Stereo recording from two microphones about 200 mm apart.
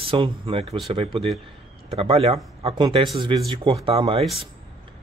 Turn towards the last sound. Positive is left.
turn(degrees=-30)  # may be behind; listen again after turning